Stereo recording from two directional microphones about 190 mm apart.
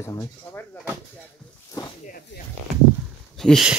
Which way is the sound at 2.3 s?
65° left (ahead or behind).